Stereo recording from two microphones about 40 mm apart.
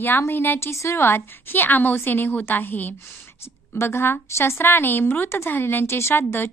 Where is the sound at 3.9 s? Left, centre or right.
Left.